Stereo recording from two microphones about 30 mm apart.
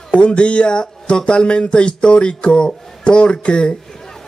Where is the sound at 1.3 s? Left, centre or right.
Left.